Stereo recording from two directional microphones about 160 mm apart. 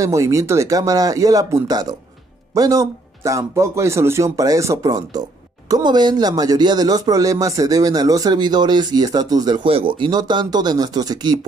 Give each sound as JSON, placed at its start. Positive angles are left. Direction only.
{"t": 0.0, "sound": "speech", "side_deg": -20}